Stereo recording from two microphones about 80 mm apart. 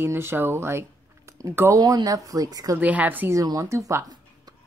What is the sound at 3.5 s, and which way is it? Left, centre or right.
Speech, right.